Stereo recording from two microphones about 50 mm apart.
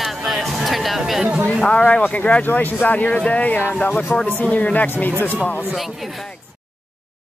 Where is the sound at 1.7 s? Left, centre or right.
Left.